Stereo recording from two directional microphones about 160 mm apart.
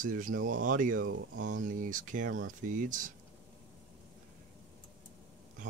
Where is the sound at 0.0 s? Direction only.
55° right (ahead or behind).